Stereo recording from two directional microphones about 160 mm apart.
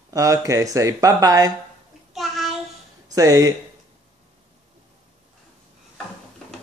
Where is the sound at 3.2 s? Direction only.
20° right (ahead or behind).